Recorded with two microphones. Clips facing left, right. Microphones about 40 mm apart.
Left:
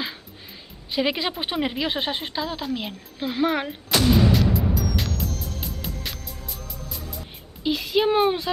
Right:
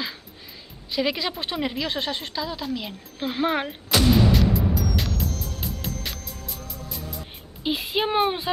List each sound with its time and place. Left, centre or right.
0.9 s speech: centre
2.9 s artillery fire: centre
7.6 s speech: centre